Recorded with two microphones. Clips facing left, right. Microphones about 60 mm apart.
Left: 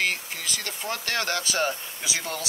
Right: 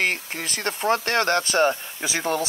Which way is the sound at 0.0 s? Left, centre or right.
Right.